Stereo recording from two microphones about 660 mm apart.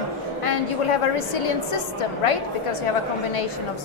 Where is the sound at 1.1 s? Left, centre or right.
Left.